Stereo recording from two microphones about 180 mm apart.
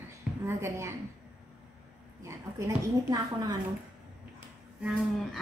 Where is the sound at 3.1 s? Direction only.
20° right (ahead or behind).